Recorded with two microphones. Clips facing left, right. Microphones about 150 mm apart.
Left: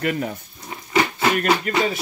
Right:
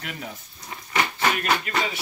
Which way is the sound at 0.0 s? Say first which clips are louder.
Left 12 dB; 60° left (ahead or behind).